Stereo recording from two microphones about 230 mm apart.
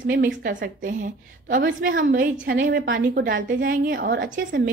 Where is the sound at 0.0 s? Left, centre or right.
Right.